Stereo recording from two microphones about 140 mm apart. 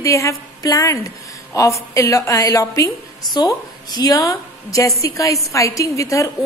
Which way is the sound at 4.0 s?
25° left (ahead or behind).